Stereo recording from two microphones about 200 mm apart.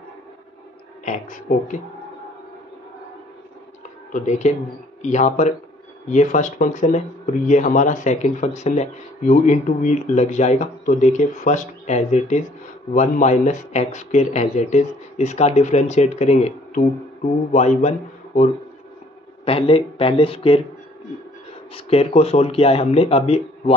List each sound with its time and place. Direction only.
1.0 s speech: 40° left (ahead or behind)
4.1 s speech: 35° left (ahead or behind)
21.7 s speech: 30° left (ahead or behind)